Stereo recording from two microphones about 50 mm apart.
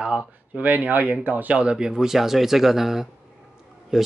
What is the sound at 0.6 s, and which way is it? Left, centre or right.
Speech, right.